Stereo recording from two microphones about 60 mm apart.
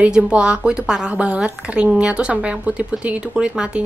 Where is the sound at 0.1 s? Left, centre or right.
Centre.